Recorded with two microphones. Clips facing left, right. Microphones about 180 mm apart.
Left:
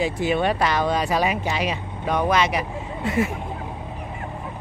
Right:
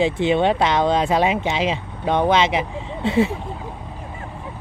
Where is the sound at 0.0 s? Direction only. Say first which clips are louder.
Right 4 dB; 25° right (ahead or behind).